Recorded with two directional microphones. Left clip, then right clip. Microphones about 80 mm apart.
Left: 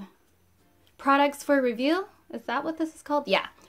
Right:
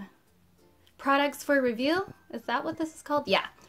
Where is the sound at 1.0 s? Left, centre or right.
Centre.